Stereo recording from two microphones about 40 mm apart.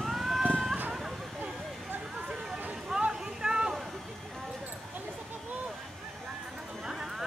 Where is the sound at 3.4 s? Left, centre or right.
Right.